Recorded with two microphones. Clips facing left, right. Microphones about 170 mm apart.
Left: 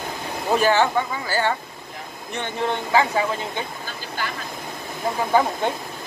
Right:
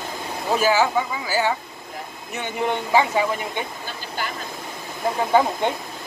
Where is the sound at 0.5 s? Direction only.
5° right (ahead or behind).